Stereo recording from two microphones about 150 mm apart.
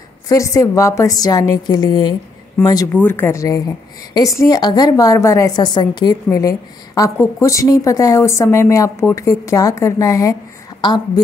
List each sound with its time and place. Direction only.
0.3 s speech: 20° left (ahead or behind)
2.9 s speech: 15° left (ahead or behind); by 6.1 s 30° left (ahead or behind)
7.0 s a woman's voice: 20° left (ahead or behind)